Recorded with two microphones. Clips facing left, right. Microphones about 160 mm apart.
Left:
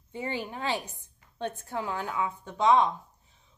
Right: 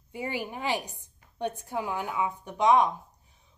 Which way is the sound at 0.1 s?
10° right (ahead or behind).